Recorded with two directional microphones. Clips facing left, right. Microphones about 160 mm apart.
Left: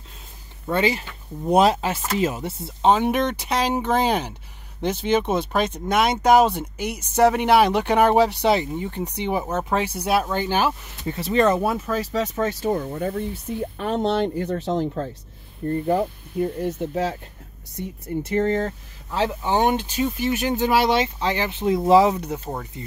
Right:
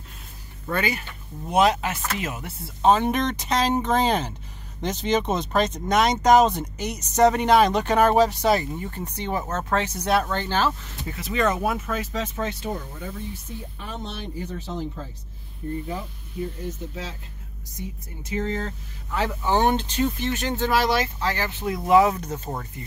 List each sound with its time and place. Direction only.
0.7 s speech: 25° left (ahead or behind)
2.8 s speech: 10° left (ahead or behind)
11.1 s speech: 30° left (ahead or behind); by 18.7 s 55° left (ahead or behind)
19.1 s speech: 20° left (ahead or behind)